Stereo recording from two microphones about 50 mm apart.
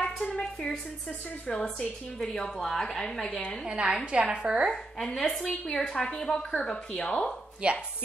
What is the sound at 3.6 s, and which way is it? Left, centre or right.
A woman's voice, centre.